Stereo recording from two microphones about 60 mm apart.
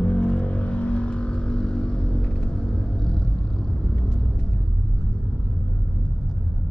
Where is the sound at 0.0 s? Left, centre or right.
Centre.